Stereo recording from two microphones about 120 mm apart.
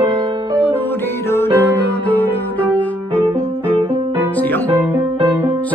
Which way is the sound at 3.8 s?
30° right (ahead or behind).